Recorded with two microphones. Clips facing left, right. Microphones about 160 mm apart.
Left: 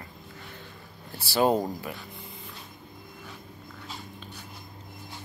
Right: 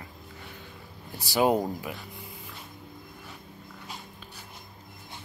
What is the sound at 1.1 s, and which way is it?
Speech, 15° right (ahead or behind).